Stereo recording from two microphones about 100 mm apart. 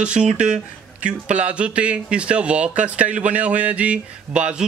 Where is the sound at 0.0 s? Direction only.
10° right (ahead or behind).